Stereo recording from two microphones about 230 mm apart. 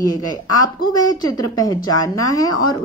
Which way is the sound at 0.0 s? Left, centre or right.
Centre.